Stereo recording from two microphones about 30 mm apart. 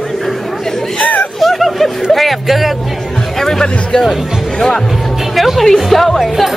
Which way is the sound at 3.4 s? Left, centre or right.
Centre.